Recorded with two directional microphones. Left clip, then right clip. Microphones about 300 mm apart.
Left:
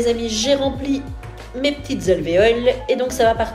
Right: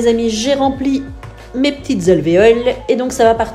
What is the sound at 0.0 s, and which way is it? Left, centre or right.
Speech, right.